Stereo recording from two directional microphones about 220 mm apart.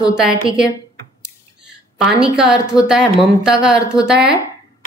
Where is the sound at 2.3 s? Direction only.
5° right (ahead or behind).